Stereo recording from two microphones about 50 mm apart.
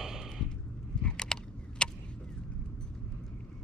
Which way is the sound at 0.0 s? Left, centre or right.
Centre.